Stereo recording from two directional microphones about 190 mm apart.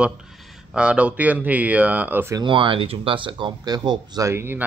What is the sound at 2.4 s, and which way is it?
Speech, 25° right (ahead or behind).